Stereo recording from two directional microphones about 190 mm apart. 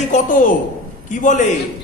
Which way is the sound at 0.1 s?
45° left (ahead or behind).